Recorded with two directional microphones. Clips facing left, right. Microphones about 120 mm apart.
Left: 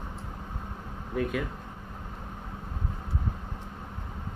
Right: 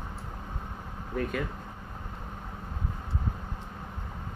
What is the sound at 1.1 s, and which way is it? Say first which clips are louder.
Speech: left 2 dB; 5° left (ahead or behind).